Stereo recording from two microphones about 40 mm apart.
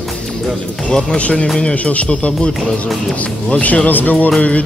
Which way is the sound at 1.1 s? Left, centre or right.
Left.